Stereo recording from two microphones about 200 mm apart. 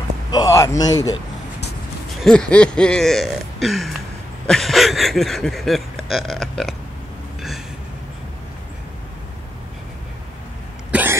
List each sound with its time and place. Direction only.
0.3 s a man's voice: 20° left (ahead or behind)
2.1 s a sound: 5° left (ahead or behind)
10.9 s hiccup: 10° right (ahead or behind)